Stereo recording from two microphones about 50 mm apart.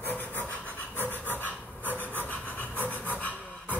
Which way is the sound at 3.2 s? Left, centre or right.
Left.